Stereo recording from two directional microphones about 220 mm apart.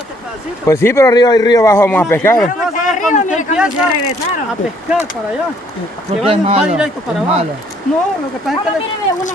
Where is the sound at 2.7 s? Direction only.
35° left (ahead or behind).